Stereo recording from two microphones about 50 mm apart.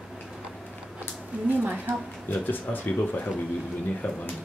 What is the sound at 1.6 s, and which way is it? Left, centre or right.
Speech, right.